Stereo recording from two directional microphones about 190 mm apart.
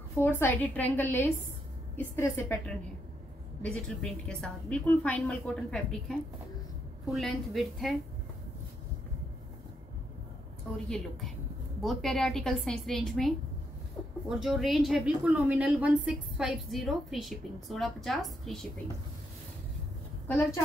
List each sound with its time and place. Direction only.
0.2 s a woman's voice: 10° left (ahead or behind)
10.9 s a woman's voice: centre (ahead or behind)
14.0 s a sound: 10° left (ahead or behind)
14.3 s a woman's voice: centre (ahead or behind)
20.2 s a woman's voice: 10° left (ahead or behind)